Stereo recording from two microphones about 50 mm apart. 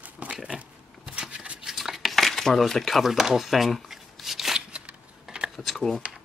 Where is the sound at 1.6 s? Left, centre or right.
Centre.